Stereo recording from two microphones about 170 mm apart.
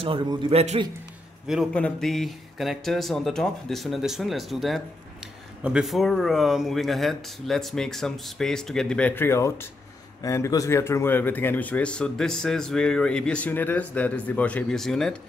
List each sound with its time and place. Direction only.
0.0 s a man's voice: 30° right (ahead or behind)
1.5 s speech: 5° left (ahead or behind)